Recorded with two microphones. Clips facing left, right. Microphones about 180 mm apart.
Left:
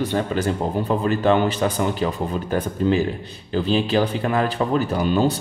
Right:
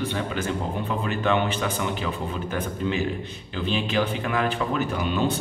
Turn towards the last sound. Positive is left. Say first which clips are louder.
# left 5 dB
turn(degrees=35)  # may be behind; listen again after turning